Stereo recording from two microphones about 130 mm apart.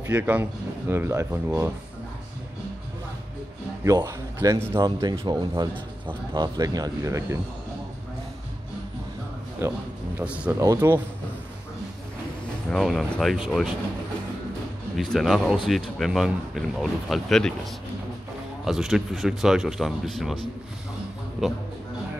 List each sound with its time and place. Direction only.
0.0 s speech: 15° right (ahead or behind)
3.8 s a man's voice: 25° right (ahead or behind)
4.8 s a man's voice: 35° right (ahead or behind)
9.6 s speech: 15° right (ahead or behind)
10.6 s a man's voice: 20° right (ahead or behind)
12.6 s speech: 5° left (ahead or behind)
15.1 s speech: centre (ahead or behind)
18.6 s speech: 5° right (ahead or behind)